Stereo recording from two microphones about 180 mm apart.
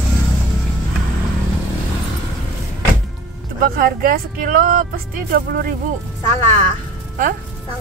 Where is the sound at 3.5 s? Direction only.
50° right (ahead or behind).